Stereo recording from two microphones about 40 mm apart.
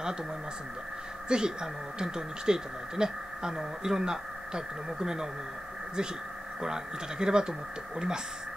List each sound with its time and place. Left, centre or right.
1.3 s speech: centre
6.6 s speech: centre